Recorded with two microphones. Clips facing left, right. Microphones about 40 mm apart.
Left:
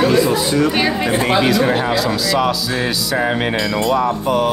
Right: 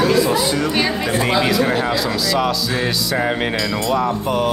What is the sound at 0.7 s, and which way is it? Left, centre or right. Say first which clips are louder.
Speech: left 2 dB; centre.